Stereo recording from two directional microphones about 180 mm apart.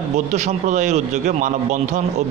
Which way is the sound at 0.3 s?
40° right (ahead or behind).